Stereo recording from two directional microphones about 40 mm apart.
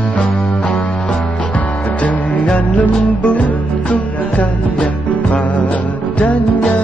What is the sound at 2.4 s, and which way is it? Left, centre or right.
Music, left.